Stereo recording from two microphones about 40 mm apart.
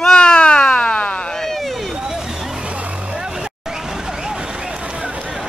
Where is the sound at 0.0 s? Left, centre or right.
Centre.